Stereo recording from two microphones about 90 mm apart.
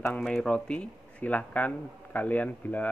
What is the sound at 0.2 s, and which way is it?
Speech, 10° left (ahead or behind).